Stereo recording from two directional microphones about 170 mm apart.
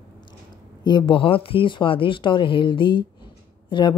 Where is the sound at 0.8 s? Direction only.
25° left (ahead or behind).